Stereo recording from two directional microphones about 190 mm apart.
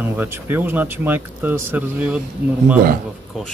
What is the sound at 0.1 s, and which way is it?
Speech, 10° right (ahead or behind).